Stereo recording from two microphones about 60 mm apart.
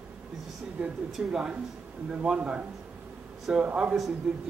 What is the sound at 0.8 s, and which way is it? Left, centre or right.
Speech, centre.